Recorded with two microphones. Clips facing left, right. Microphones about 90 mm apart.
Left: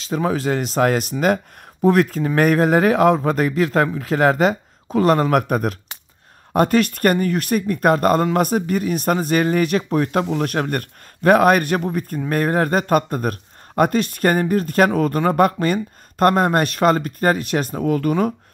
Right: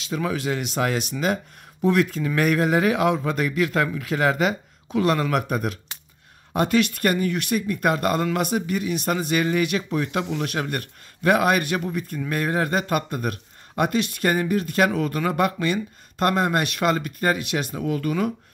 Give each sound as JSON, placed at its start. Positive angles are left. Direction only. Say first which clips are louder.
{"t": 0.0, "sound": "speech", "louder": "left 5 dB", "side_deg": 40}